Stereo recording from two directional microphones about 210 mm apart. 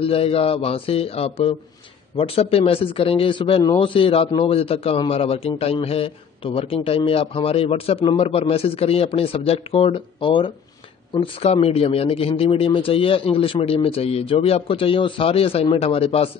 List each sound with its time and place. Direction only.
0.0 s a man's voice: 30° left (ahead or behind)